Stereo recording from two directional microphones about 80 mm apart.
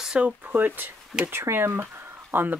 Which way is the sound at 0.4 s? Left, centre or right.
Right.